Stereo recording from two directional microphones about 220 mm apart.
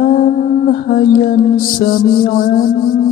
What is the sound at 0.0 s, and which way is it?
Music, 40° left (ahead or behind).